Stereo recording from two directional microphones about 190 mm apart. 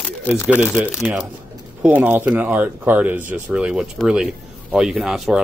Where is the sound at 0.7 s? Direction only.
5° right (ahead or behind).